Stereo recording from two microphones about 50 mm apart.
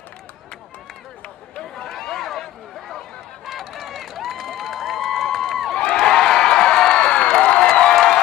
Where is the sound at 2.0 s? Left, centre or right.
Centre.